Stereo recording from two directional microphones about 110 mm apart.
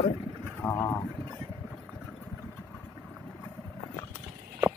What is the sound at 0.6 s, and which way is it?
Speech, 20° left (ahead or behind).